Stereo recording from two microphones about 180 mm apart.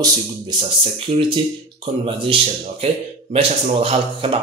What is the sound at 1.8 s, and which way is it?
Speech, 30° right (ahead or behind).